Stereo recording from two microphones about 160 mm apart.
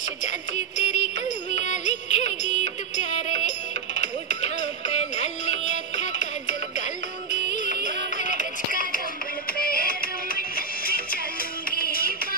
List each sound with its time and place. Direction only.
0.8 s music: 50° left (ahead or behind)
4.3 s music: 45° left (ahead or behind)
7.5 s music: 55° left (ahead or behind)
9.6 s music: 65° left (ahead or behind)
11.7 s music: 65° left (ahead or behind)